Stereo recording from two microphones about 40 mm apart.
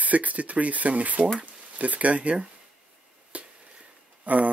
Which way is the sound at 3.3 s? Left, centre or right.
Right.